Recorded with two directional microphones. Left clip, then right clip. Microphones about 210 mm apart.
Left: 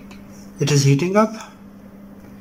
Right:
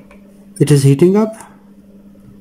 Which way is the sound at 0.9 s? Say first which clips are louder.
Right 4 dB; 25° right (ahead or behind).